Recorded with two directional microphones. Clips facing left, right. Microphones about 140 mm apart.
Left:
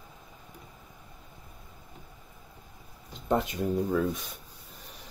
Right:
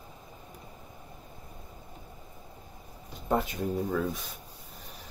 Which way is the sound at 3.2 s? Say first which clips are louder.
Left 1 dB; 5° right (ahead or behind).